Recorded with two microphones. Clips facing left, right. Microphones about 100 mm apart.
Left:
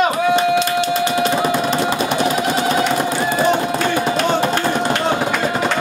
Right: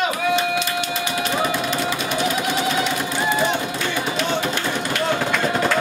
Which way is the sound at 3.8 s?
45° left (ahead or behind).